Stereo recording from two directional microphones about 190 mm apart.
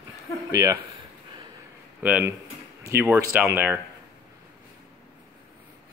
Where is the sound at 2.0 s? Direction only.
5° right (ahead or behind).